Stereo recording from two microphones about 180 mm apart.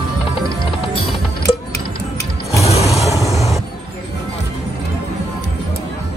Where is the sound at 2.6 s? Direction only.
35° left (ahead or behind).